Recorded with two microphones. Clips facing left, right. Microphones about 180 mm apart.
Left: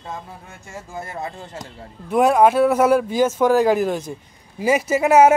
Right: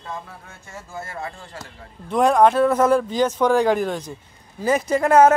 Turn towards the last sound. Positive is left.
turn(degrees=10)  # may be behind; listen again after turning